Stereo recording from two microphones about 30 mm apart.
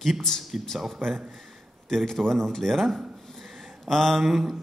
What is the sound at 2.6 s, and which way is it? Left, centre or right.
A man's voice, centre.